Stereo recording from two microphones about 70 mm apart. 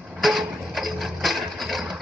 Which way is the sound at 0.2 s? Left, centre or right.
Centre.